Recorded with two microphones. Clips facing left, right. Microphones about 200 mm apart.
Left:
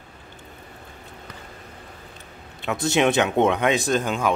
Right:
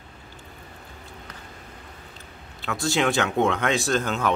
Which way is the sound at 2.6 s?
20° left (ahead or behind).